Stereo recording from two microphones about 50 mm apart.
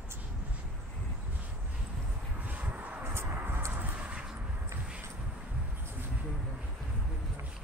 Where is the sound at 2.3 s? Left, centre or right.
Right.